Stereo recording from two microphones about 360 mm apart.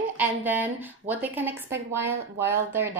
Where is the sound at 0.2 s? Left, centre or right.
Centre.